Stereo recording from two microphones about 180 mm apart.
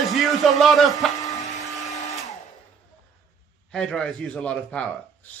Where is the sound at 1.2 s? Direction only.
20° left (ahead or behind).